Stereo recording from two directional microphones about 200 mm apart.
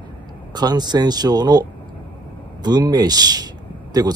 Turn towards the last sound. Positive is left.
turn(degrees=-20)  # may be behind; listen again after turning